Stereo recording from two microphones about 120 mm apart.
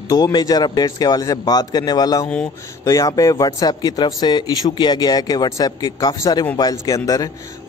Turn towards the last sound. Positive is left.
turn(degrees=30)  # may be behind; listen again after turning